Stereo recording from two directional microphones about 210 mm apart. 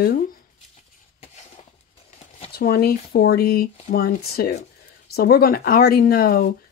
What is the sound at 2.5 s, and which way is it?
Speech, 50° left (ahead or behind).